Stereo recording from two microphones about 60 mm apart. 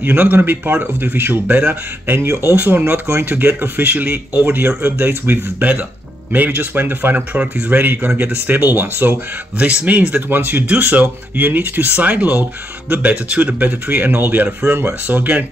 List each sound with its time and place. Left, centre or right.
0.0 s speech: right
7.8 s speech: right
9.6 s speech: right
10.3 s speech: right